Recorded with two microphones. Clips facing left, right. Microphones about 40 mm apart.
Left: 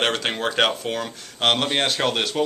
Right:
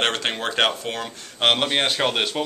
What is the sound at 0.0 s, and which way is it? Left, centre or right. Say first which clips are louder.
Speech: left 1 dB; centre.